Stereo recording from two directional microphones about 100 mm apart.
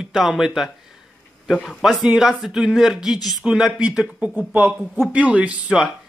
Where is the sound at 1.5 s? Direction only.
Centre (ahead or behind).